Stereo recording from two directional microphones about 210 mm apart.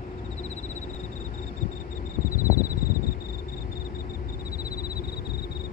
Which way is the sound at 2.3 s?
45° left (ahead or behind).